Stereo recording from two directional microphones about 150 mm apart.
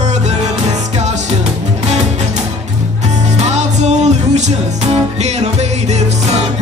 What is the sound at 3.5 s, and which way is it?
Music, 50° right (ahead or behind).